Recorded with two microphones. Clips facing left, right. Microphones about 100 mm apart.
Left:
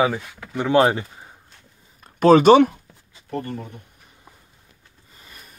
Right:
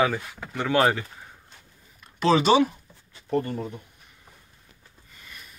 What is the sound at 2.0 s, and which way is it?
Speech, 50° left (ahead or behind).